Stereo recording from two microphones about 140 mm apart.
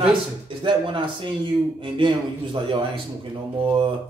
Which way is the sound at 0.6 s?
35° right (ahead or behind).